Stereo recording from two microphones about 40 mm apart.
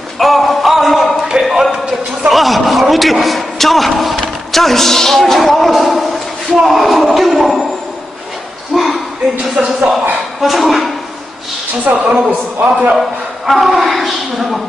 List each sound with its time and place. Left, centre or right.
0.2 s music: centre
1.4 s a sound: centre
2.2 s a man's voice: centre
8.7 s a sound: centre
9.6 s a man's voice: centre
11.9 s a man's voice: right
13.5 s a man's voice: centre